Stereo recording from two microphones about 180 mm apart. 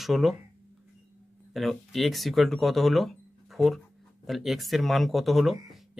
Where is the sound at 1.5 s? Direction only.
Centre (ahead or behind).